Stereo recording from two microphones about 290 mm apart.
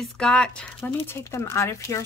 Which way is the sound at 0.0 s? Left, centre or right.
Centre.